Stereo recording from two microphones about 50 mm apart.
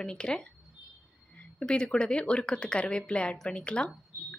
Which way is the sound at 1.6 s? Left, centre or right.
Centre.